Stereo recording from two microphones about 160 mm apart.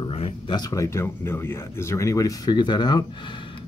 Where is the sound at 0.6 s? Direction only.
20° left (ahead or behind).